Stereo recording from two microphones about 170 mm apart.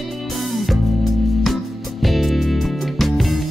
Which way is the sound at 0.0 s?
Centre (ahead or behind).